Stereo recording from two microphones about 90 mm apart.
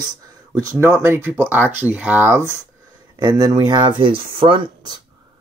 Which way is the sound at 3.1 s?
45° right (ahead or behind).